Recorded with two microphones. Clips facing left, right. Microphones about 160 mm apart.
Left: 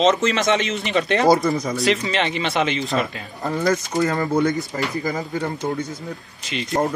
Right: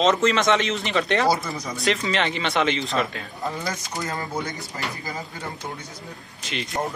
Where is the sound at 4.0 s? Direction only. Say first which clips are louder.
Left 9 dB; 70° left (ahead or behind).